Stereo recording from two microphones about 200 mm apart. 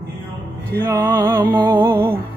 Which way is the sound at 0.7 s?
10° right (ahead or behind).